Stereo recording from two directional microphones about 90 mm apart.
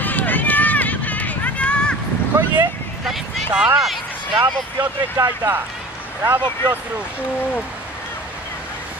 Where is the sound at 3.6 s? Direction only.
5° right (ahead or behind).